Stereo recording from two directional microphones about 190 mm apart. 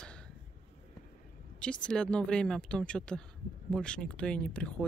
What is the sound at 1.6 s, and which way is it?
Speech, 5° left (ahead or behind).